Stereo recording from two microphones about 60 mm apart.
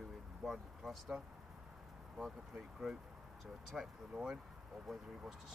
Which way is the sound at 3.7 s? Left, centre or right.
Centre.